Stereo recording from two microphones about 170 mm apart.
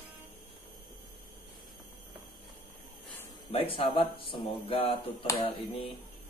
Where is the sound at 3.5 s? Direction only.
35° left (ahead or behind).